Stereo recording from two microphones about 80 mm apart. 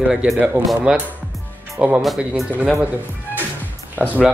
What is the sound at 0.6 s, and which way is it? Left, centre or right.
Dishes, right.